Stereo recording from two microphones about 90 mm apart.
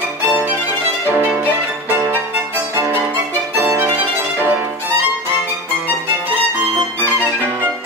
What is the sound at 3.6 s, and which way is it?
Violin, 25° right (ahead or behind).